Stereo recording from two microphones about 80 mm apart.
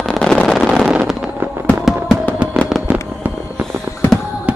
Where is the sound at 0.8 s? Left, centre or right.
Centre.